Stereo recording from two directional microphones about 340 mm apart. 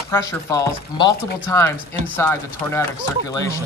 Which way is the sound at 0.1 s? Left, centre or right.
Centre.